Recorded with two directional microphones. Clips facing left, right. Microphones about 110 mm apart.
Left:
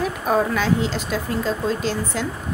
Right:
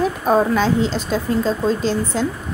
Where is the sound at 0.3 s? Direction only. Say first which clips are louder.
Right 3 dB; 30° right (ahead or behind).